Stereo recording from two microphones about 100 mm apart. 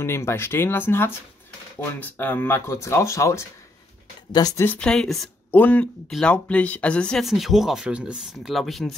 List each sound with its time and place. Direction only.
0.0 s speech: 25° left (ahead or behind)
4.7 s speech: 5° left (ahead or behind)
5.5 s speech: 15° left (ahead or behind); by 8.9 s centre (ahead or behind)